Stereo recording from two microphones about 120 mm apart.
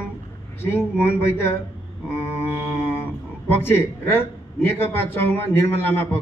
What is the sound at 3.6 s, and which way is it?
A man's voice, 20° left (ahead or behind).